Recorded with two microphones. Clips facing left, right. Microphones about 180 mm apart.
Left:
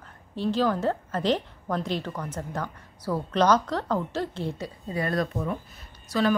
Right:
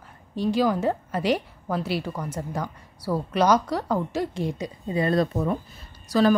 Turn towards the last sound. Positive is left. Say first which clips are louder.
# right 4 dB
turn(degrees=-40)  # may be behind; listen again after turning